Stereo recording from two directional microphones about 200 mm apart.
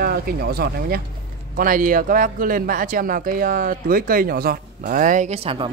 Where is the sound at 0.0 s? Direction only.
50° right (ahead or behind).